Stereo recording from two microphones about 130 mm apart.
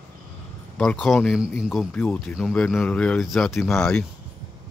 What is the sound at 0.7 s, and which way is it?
Speech, 5° left (ahead or behind).